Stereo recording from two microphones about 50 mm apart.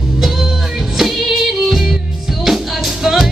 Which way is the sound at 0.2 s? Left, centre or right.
Centre.